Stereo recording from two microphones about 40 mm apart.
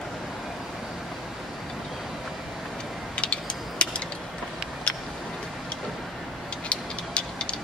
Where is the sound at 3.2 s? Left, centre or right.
Left.